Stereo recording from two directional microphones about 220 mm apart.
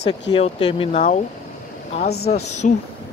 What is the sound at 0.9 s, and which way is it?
Speech, 35° left (ahead or behind).